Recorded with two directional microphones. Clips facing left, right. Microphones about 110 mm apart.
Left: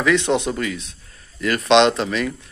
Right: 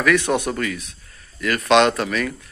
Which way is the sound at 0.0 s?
20° left (ahead or behind).